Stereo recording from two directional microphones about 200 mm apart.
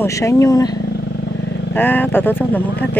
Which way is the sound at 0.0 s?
15° left (ahead or behind).